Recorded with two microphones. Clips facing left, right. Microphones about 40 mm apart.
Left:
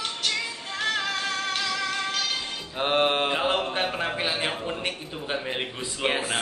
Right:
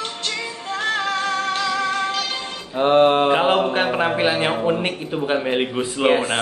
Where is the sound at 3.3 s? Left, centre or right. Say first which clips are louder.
Right 8 dB; right.